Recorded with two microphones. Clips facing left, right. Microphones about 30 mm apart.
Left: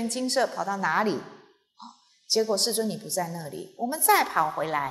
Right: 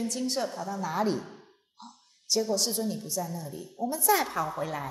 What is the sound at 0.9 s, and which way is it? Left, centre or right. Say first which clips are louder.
Sigh: left 3 dB; left.